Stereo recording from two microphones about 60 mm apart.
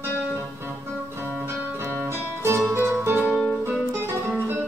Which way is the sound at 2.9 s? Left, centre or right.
Right.